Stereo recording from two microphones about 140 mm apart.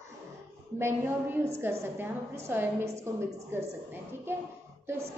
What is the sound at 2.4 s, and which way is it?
A woman's voice, 20° right (ahead or behind).